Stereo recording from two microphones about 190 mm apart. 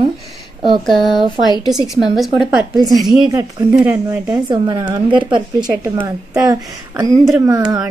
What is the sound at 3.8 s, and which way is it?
Speech, 15° right (ahead or behind).